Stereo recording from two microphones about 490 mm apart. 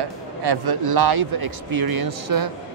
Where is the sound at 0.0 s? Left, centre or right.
Right.